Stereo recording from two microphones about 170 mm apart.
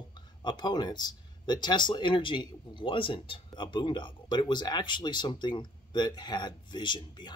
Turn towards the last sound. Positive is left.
turn(degrees=25)  # may be behind; listen again after turning